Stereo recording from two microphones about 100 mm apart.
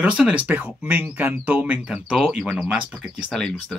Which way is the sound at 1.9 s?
5° right (ahead or behind).